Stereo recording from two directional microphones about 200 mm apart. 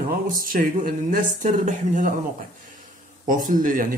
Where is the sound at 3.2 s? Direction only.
40° right (ahead or behind).